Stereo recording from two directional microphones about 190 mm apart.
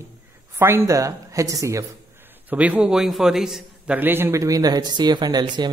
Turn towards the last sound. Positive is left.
turn(degrees=-20)  # may be behind; listen again after turning